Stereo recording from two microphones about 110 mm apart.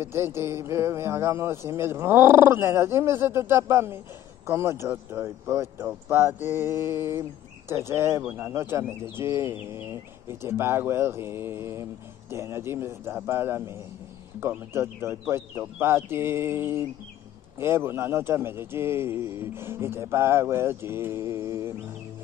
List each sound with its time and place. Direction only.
0.0 s speech: 20° right (ahead or behind)